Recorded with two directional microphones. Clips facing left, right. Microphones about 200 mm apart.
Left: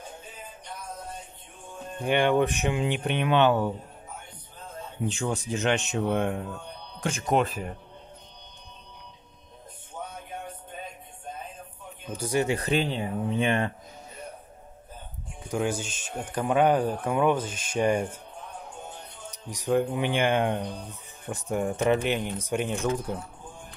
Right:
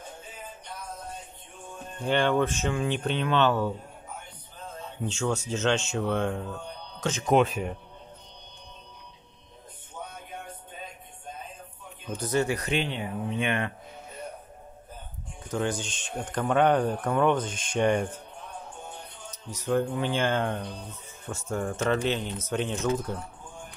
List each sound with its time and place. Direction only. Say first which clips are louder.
2.0 s speech: left 2 dB; 15° left (ahead or behind)
5.0 s a man's voice: even; 15° left (ahead or behind)
7.2 s a man's voice: right 3 dB; centre (ahead or behind)
12.1 s speech: even; 10° left (ahead or behind)
12.4 s speech: left 3 dB; 30° left (ahead or behind)
15.4 s speech: left 1 dB; 10° left (ahead or behind)
19.3 s speech: left 2 dB; 15° left (ahead or behind)